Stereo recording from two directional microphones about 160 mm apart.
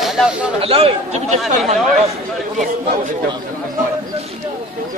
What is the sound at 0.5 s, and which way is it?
Speech, 35° right (ahead or behind).